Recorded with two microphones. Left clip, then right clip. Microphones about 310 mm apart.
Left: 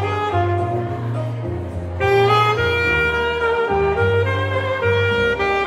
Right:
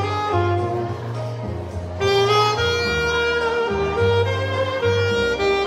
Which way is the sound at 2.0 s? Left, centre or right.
Centre.